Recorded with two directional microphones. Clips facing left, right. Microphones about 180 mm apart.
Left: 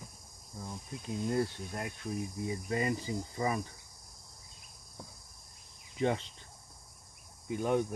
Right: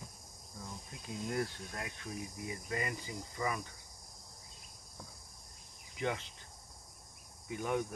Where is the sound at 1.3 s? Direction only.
25° left (ahead or behind).